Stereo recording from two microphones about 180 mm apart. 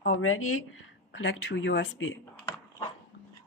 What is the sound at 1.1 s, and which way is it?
Speech, 90° left.